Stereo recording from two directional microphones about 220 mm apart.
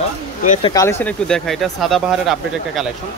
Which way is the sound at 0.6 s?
15° left (ahead or behind).